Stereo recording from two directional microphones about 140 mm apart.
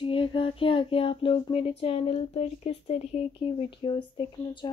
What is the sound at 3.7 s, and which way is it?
Speech, 35° left (ahead or behind).